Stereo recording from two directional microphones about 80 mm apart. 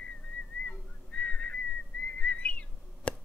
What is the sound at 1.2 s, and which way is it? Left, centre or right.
Whistling, centre.